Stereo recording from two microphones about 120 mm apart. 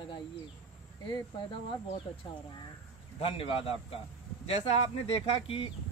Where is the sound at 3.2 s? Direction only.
50° left (ahead or behind).